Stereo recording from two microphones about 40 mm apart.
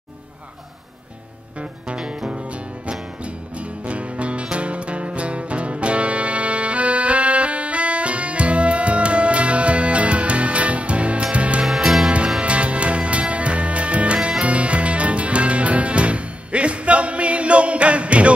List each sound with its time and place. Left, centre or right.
3.5 s music: right
11.6 s music: centre
12.4 s music: right